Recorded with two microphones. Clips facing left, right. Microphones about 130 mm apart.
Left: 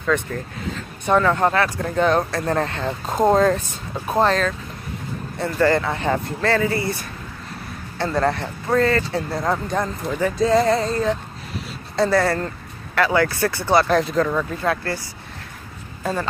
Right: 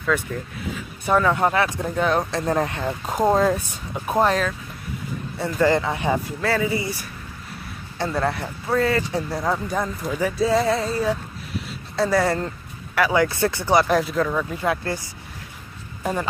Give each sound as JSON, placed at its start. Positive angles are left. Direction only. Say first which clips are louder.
{"t": 0.1, "sound": "speech", "louder": "left 2 dB", "side_deg": -10}
{"t": 16.0, "sound": "speech", "louder": "left 1 dB", "side_deg": -15}